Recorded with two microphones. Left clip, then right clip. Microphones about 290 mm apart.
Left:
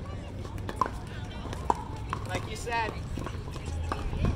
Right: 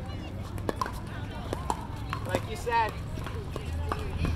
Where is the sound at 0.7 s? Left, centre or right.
Right.